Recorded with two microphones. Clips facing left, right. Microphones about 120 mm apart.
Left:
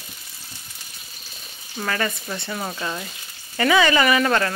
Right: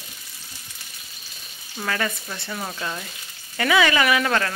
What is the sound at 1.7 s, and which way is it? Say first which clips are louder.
Speech: left 1 dB; centre (ahead or behind).